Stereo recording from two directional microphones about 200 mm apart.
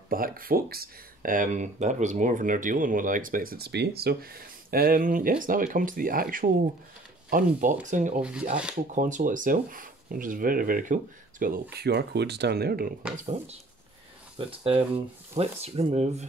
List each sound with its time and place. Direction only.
0.1 s speech: 45° right (ahead or behind)
8.2 s speech: 5° right (ahead or behind)
8.9 s speech: 40° right (ahead or behind)
11.7 s speech: 55° right (ahead or behind)
13.1 s speech: 35° right (ahead or behind)